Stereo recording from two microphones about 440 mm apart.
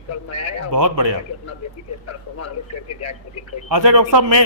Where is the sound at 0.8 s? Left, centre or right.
Right.